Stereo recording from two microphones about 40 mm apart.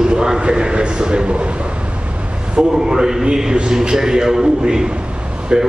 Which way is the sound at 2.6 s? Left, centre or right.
Right.